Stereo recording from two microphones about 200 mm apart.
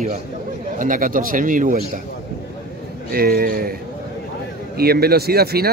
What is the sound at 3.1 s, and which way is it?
Speech, 50° right (ahead or behind).